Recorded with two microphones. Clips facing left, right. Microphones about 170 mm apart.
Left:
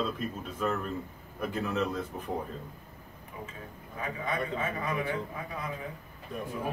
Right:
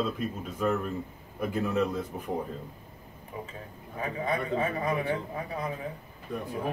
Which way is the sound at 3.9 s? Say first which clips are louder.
Right 3 dB; 35° right (ahead or behind).